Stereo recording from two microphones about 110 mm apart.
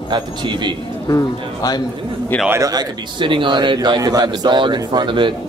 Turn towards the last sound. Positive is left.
turn(degrees=-45)  # may be behind; listen again after turning